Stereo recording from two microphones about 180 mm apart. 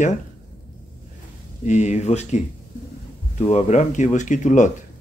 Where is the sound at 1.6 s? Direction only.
40° left (ahead or behind).